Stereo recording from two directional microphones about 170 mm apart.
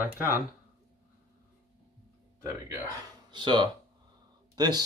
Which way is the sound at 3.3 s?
25° right (ahead or behind).